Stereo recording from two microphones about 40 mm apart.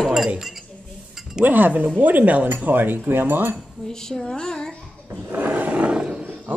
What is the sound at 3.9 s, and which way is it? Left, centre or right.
Speech, centre.